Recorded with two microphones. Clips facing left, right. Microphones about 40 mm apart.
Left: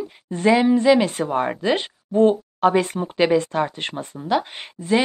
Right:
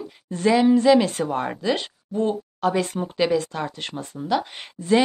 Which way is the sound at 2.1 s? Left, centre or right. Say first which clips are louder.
Left 8 dB; left.